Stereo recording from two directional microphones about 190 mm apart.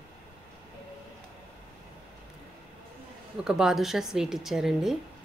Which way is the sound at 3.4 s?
5° right (ahead or behind).